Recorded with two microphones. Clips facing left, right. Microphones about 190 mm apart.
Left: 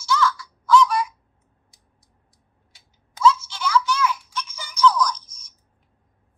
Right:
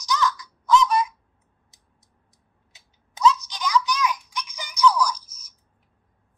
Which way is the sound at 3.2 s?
15° right (ahead or behind).